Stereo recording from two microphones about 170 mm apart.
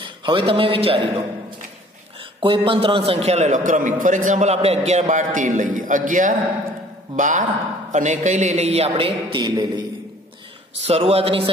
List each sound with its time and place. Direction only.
0.0 s a man's voice: 30° right (ahead or behind)
2.4 s a man's voice: 30° right (ahead or behind)
10.8 s a man's voice: 40° right (ahead or behind)